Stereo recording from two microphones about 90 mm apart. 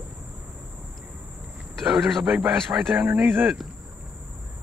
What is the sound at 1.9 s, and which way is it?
Speech, centre (ahead or behind).